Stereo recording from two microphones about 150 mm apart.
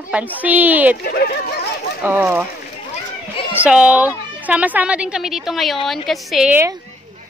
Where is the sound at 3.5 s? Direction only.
10° right (ahead or behind).